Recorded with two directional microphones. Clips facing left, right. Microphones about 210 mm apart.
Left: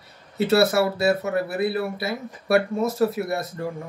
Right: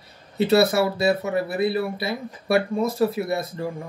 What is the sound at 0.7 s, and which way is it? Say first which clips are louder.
Speech: even; centre (ahead or behind).